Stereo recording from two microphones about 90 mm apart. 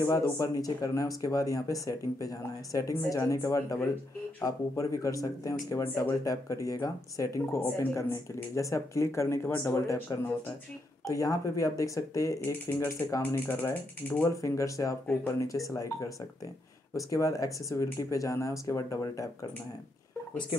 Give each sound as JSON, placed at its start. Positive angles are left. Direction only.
{"t": 0.1, "sound": "speech", "side_deg": 45}